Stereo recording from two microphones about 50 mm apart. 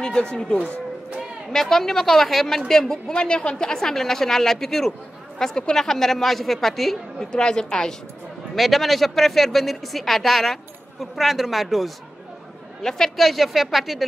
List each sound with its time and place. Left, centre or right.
0.0 s a woman's voice: centre
1.5 s a woman's voice: centre
7.4 s a woman's voice: centre
8.5 s speech: centre
12.8 s a woman's voice: centre